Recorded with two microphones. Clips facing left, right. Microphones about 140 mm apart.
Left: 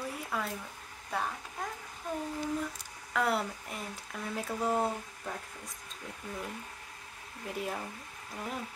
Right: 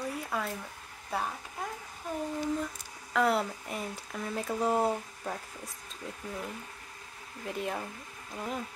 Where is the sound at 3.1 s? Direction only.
Centre (ahead or behind).